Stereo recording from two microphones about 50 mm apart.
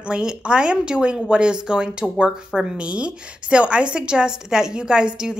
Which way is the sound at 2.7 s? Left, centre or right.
Right.